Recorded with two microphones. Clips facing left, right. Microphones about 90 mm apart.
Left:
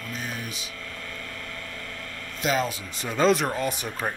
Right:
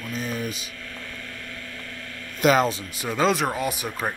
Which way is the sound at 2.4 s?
60° right (ahead or behind).